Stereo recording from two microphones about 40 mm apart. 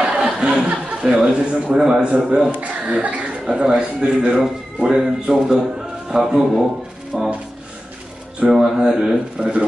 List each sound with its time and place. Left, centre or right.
0.0 s chuckle: right
2.6 s speech: right
3.4 s a man's voice: right
4.4 s speech: centre
4.9 s a man's voice: right
7.1 s speech: centre
8.5 s speech: centre
9.4 s a man's voice: right